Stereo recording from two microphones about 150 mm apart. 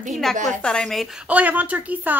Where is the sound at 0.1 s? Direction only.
Centre (ahead or behind).